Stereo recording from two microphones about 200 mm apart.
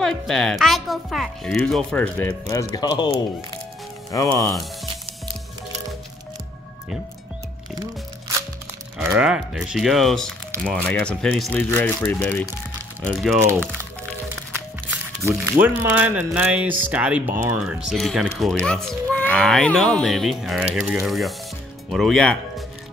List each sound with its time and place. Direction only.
0.0 s speech: centre (ahead or behind)
2.5 s speech: 20° left (ahead or behind)
8.9 s speech: 5° right (ahead or behind)
14.5 s music: 10° right (ahead or behind)
15.6 s speech: 10° right (ahead or behind)